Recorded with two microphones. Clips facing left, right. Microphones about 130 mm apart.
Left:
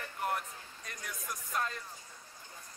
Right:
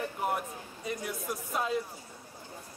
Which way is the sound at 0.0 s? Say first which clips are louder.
Right 4 dB; 10° right (ahead or behind).